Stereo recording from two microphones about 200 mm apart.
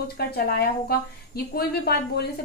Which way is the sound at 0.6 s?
50° left (ahead or behind).